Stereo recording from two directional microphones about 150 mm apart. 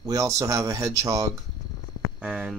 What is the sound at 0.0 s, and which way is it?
Speech, 25° right (ahead or behind).